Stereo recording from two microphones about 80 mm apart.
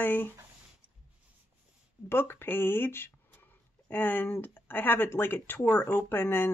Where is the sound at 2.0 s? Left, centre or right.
Left.